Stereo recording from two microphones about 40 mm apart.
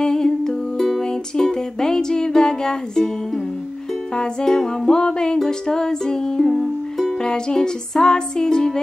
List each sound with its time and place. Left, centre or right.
0.0 s music: centre
4.1 s music: left
7.2 s music: centre